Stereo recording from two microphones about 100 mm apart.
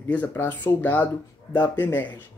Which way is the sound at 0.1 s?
20° left (ahead or behind).